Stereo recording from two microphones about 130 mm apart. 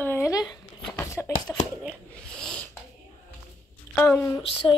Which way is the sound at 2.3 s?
5° left (ahead or behind).